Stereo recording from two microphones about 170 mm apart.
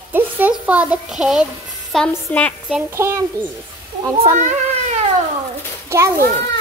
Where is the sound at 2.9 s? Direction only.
15° right (ahead or behind).